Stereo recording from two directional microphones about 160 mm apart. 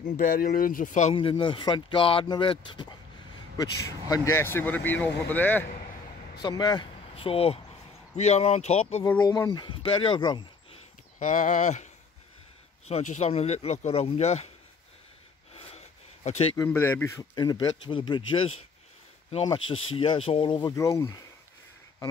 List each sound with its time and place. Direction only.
0.2 s speech: 60° left (ahead or behind)
1.1 s speech: 30° left (ahead or behind)
4.1 s speech: 15° left (ahead or behind)
6.4 s speech: 25° left (ahead or behind); by 9.0 s 40° left (ahead or behind)
9.2 s speech: 25° left (ahead or behind)
11.1 s speech: 55° left (ahead or behind)
16.5 s speech: 15° left (ahead or behind)
17.4 s speech: 25° left (ahead or behind)